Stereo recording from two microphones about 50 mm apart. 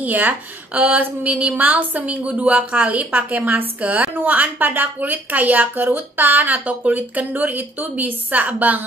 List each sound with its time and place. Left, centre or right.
0.0 s a woman's voice: right
3.8 s a woman's voice: right
4.2 s a woman's voice: right